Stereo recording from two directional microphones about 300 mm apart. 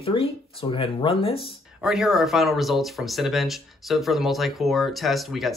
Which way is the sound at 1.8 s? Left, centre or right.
Centre.